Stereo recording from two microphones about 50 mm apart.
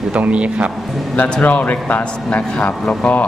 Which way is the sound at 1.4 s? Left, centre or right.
Left.